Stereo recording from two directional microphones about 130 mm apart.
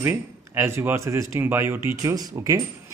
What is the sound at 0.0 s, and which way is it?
Speech, 20° right (ahead or behind).